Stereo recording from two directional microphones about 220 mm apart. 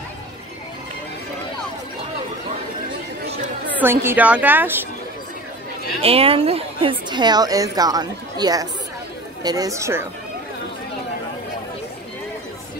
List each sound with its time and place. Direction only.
3.8 s a woman's voice: 10° right (ahead or behind)
6.0 s a woman's voice: 25° right (ahead or behind)